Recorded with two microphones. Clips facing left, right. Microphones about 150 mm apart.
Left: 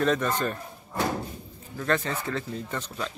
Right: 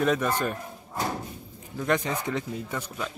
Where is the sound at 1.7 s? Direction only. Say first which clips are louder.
Right 1 dB; 15° right (ahead or behind).